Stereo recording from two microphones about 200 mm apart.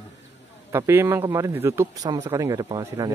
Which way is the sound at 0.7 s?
15° right (ahead or behind).